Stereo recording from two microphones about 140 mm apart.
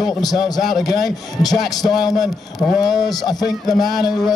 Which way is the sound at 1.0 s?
30° left (ahead or behind).